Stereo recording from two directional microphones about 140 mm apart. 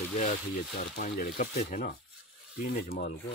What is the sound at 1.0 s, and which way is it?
Speech, 85° left.